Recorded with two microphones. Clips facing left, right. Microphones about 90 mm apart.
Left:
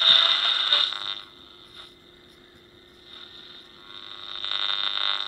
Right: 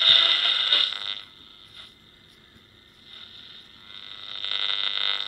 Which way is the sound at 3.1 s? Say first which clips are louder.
Left 1 dB; 25° left (ahead or behind).